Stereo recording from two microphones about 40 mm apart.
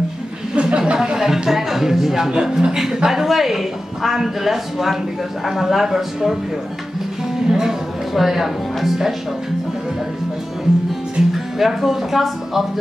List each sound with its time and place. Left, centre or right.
0.6 s a sound: right
1.1 s a woman's voice: centre
7.4 s speech: centre
11.3 s speech: centre